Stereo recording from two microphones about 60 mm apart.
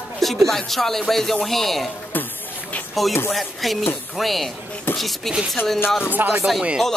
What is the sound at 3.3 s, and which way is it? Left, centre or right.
Speech, centre.